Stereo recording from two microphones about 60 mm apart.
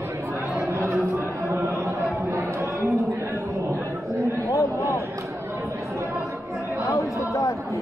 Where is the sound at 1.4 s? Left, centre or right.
Right.